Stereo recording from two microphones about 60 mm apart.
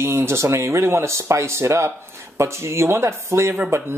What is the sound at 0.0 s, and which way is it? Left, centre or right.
Speech, right.